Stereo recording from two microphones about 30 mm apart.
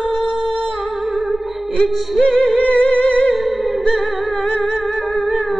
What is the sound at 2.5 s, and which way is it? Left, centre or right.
Music, left.